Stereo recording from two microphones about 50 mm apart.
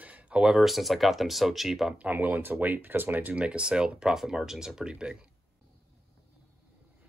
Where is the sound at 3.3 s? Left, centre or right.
Right.